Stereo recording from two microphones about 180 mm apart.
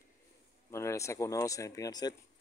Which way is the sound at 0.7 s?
15° left (ahead or behind).